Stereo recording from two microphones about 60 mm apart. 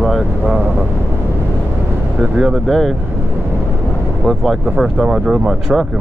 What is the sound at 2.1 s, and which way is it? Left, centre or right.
Speech, right.